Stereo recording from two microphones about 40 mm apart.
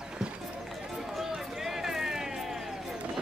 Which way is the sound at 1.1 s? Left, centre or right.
Centre.